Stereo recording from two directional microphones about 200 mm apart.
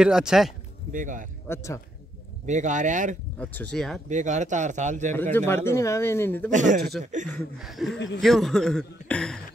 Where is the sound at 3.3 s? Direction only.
10° left (ahead or behind).